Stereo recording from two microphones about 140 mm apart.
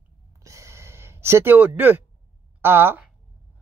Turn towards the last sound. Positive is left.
turn(degrees=-15)  # may be behind; listen again after turning